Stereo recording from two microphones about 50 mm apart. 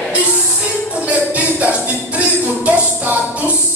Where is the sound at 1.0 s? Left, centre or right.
Right.